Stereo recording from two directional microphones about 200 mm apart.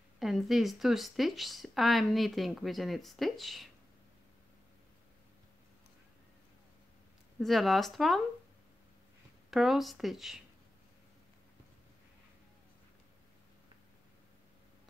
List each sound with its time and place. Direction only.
0.2 s speech: centre (ahead or behind)
7.3 s speech: centre (ahead or behind)
9.5 s speech: centre (ahead or behind)